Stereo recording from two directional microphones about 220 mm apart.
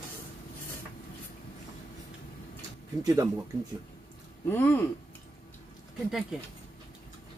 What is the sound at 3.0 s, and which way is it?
Speech, 15° right (ahead or behind).